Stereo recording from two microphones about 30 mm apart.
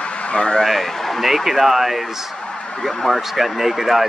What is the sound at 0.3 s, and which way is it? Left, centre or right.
Speech, left.